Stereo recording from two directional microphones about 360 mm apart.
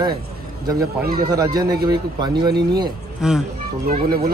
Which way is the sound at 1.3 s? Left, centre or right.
Centre.